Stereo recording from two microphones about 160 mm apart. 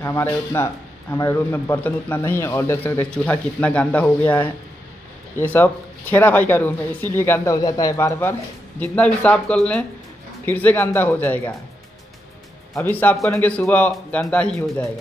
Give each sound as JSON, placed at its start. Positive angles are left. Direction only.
{"t": 0.0, "sound": "a man's voice", "side_deg": 20}
{"t": 12.7, "sound": "a man's voice", "side_deg": 10}